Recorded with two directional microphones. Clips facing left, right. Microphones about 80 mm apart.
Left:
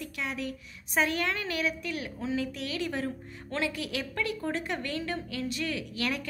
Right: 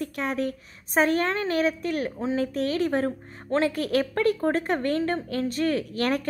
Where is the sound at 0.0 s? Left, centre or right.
Right.